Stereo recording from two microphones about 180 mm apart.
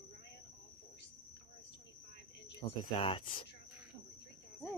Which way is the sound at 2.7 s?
25° left (ahead or behind).